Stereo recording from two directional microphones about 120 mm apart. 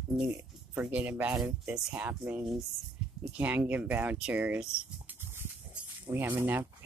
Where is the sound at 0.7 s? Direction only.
15° right (ahead or behind).